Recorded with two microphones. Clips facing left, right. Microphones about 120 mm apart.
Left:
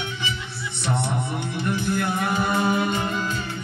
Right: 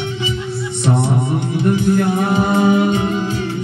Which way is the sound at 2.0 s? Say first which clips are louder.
Right 8 dB; 40° right (ahead or behind).